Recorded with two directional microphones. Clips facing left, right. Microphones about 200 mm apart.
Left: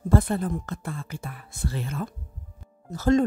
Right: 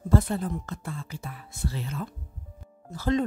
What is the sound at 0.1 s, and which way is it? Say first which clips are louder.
Speech: left 2 dB; 55° left (ahead or behind).